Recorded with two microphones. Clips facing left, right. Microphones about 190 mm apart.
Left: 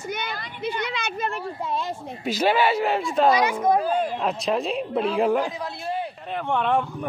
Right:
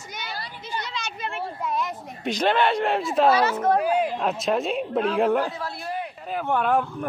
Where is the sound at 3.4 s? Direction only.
15° left (ahead or behind).